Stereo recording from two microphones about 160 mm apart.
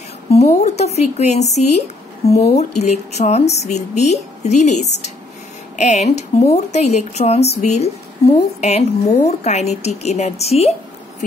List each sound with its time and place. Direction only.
0.3 s a woman's voice: 40° left (ahead or behind)